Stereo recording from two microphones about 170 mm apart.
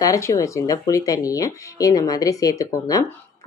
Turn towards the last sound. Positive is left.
turn(degrees=20)  # may be behind; listen again after turning